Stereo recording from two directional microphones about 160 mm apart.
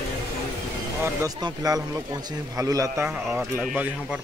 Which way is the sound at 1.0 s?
20° right (ahead or behind).